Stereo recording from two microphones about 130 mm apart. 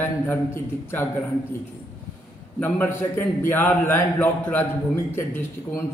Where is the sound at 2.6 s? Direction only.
15° left (ahead or behind).